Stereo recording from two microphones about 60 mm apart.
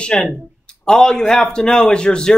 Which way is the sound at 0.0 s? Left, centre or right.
Centre.